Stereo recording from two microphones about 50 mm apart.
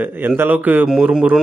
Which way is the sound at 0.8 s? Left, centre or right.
Centre.